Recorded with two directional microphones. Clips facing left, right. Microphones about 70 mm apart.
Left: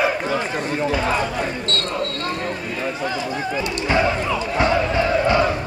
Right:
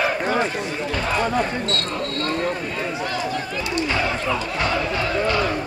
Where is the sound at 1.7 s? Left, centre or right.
Centre.